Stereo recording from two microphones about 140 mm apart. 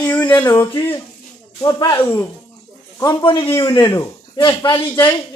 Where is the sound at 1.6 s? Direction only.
30° left (ahead or behind).